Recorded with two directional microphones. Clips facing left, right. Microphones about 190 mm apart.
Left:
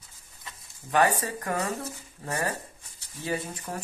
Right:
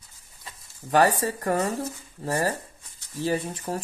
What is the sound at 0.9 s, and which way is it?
Speech, 35° right (ahead or behind).